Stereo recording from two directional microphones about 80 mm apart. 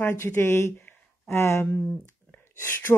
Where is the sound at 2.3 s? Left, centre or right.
Left.